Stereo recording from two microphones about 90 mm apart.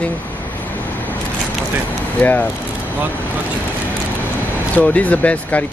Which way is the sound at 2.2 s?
20° left (ahead or behind).